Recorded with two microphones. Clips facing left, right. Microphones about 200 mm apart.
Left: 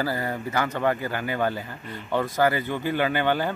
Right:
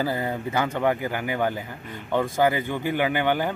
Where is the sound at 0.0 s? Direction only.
20° right (ahead or behind).